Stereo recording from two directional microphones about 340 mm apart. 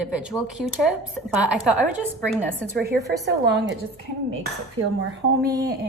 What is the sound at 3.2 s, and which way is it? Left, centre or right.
Speech, right.